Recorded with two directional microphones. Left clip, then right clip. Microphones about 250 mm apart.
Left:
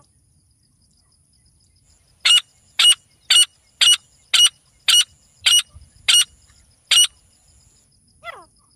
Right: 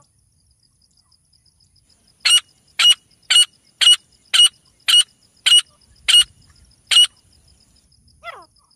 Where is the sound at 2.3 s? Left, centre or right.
Centre.